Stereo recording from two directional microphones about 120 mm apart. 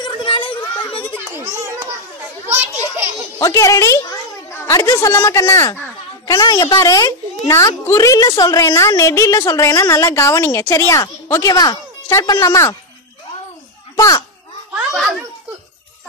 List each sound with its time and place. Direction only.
0.0 s a sound: 45° left (ahead or behind)
1.3 s children playing: 20° right (ahead or behind)
3.3 s a woman's voice: 25° left (ahead or behind)
13.9 s a child's voice: 30° left (ahead or behind)